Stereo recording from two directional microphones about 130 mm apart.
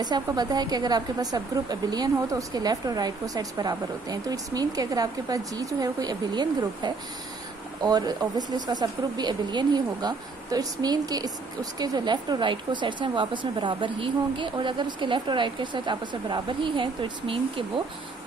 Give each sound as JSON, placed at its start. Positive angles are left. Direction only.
{"t": 0.0, "sound": "a woman's voice", "side_deg": -30}